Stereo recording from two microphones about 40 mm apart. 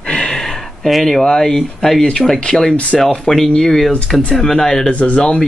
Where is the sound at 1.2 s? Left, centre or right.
Centre.